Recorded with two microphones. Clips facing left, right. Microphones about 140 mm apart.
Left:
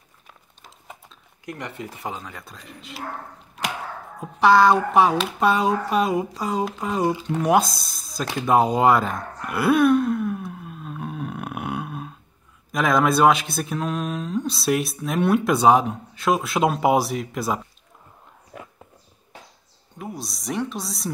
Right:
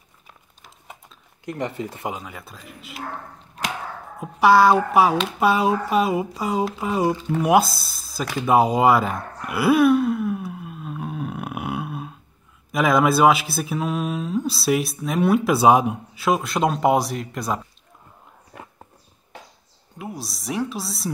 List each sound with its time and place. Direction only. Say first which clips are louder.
0.6 s a sound: left 1 dB; centre (ahead or behind)
1.4 s speech: right 6 dB; 30° right (ahead or behind)
2.0 s speech: right 2 dB; 10° right (ahead or behind)
4.2 s speech: right 1 dB; 5° right (ahead or behind)
8.4 s a sound: right 1 dB; 5° right (ahead or behind)
12.7 s speech: right 1 dB; 5° right (ahead or behind)
16.3 s speech: even; centre (ahead or behind)
20.0 s speech: even; centre (ahead or behind)